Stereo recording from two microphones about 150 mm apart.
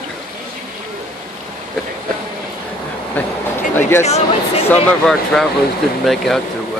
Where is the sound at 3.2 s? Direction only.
10° left (ahead or behind).